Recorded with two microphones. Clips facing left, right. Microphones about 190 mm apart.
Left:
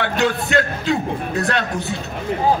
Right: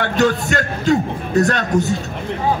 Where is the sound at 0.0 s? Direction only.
45° right (ahead or behind).